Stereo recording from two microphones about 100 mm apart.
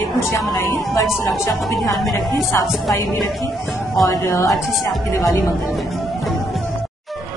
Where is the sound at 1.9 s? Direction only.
Centre (ahead or behind).